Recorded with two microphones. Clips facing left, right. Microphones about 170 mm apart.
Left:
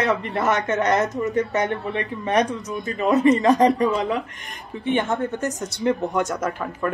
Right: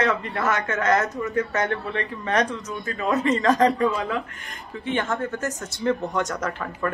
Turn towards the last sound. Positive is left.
turn(degrees=10)  # may be behind; listen again after turning